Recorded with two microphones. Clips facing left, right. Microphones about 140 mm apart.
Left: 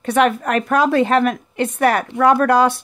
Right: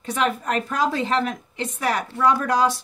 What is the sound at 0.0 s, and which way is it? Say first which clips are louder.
Speech: left 7 dB; 65° left (ahead or behind).